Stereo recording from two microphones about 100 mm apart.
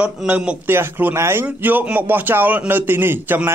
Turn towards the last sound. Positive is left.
turn(degrees=-20)  # may be behind; listen again after turning